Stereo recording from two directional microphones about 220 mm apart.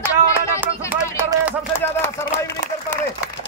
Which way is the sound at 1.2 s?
10° right (ahead or behind).